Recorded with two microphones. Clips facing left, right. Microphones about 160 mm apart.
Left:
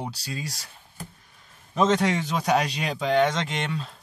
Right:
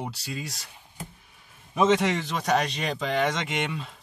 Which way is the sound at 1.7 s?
5° right (ahead or behind).